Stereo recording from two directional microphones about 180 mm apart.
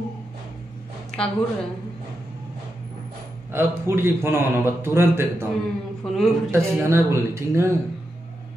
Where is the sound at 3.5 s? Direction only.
15° right (ahead or behind).